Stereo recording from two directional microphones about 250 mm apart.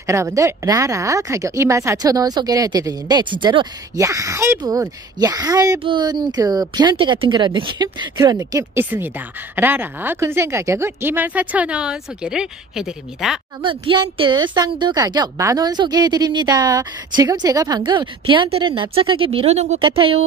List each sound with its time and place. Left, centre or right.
0.0 s speech: centre
13.6 s speech: centre